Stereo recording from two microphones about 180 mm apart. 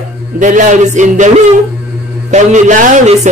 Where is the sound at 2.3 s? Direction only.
40° right (ahead or behind).